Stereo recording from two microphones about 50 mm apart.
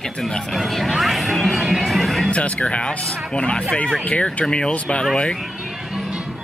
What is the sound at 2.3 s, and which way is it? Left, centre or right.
Speech, left.